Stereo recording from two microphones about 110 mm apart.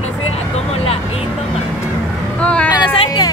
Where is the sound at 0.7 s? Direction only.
65° left (ahead or behind).